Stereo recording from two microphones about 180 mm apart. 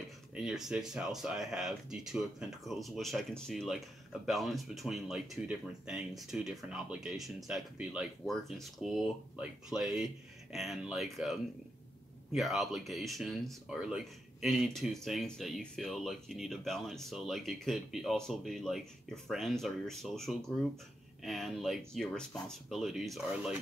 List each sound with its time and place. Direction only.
0.3 s speech: 5° right (ahead or behind)